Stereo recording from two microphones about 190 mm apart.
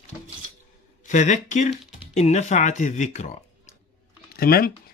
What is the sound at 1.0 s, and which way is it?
Speech, 40° left (ahead or behind).